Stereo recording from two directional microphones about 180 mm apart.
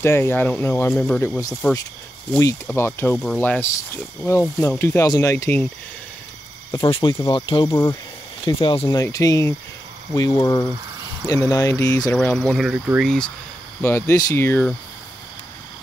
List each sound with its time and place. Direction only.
0.0 s speech: 15° left (ahead or behind)
6.7 s speech: 25° left (ahead or behind)
7.7 s speech: 15° left (ahead or behind)
8.5 s speech: 30° left (ahead or behind); by 13.0 s 10° right (ahead or behind)
13.0 s speech: 5° left (ahead or behind)